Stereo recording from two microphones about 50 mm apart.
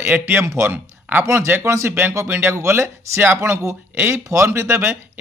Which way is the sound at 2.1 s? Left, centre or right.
Right.